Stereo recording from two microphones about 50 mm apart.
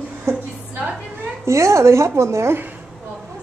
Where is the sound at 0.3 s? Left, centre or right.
Right.